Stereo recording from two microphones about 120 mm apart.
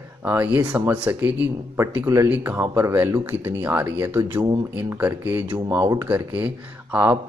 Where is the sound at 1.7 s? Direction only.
25° right (ahead or behind).